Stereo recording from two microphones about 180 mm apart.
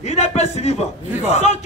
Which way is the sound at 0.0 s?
40° left (ahead or behind).